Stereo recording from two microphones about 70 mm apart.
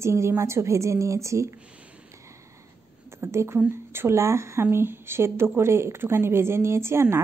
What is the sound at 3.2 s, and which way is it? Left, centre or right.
Speech, right.